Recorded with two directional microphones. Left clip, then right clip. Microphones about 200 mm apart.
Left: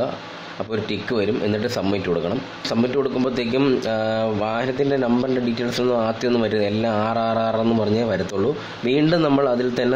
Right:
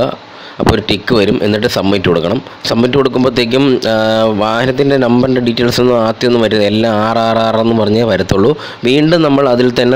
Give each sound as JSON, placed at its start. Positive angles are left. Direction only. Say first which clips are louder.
{"t": 0.8, "sound": "speech", "louder": "right 11 dB", "side_deg": -40}